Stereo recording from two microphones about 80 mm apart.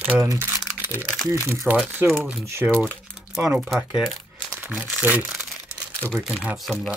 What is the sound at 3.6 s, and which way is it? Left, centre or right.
Speech, centre.